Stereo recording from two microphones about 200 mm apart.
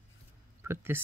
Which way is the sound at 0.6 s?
10° right (ahead or behind).